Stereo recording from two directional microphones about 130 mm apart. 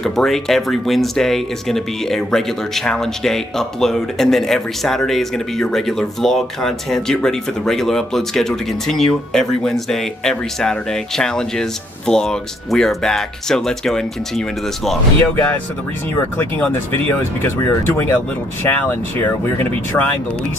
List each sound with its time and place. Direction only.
0.0 s speech: 5° left (ahead or behind)